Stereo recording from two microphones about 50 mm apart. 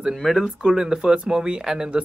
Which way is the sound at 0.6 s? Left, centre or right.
Centre.